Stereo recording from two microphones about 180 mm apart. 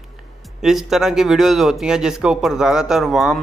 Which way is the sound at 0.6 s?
5° right (ahead or behind).